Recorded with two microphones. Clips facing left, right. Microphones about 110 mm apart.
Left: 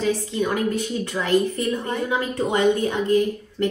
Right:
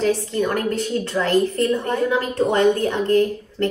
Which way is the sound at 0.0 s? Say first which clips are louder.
Right 3 dB; 15° left (ahead or behind).